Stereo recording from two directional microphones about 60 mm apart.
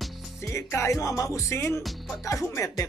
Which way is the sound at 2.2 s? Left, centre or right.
Left.